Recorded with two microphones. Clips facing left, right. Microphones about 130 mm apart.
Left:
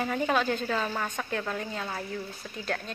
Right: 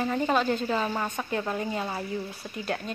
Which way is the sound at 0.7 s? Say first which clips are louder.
Right 2 dB; 10° right (ahead or behind).